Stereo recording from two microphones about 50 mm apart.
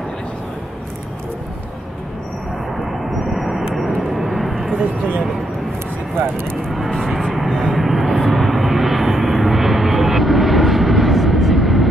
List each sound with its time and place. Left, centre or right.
2.8 s vehicle: centre
6.9 s vehicle: centre
7.3 s vehicle: centre